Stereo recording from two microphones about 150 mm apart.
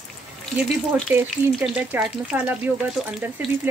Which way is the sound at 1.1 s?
15° right (ahead or behind).